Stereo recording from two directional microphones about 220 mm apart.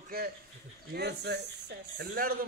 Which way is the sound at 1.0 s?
50° right (ahead or behind).